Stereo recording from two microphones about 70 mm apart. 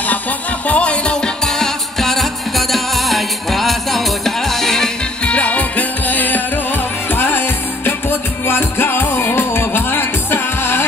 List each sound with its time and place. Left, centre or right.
0.7 s music: centre
5.3 s music: centre